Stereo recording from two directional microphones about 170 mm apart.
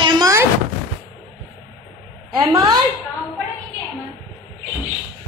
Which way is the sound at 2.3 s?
25° right (ahead or behind).